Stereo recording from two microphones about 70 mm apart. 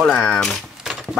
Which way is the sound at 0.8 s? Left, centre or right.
Centre.